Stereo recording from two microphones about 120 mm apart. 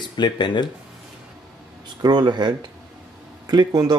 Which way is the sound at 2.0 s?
35° right (ahead or behind).